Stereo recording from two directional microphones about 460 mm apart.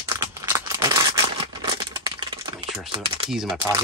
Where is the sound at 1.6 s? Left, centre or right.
Centre.